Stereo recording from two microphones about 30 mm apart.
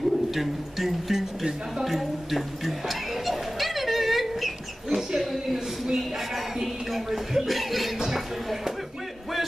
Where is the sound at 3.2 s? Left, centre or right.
Centre.